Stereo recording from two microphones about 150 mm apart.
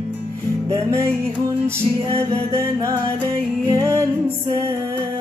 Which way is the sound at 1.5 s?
20° right (ahead or behind).